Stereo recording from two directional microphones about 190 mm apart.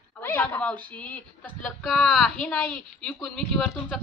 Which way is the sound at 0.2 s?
10° left (ahead or behind).